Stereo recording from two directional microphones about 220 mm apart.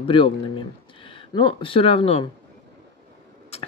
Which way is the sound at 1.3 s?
25° left (ahead or behind).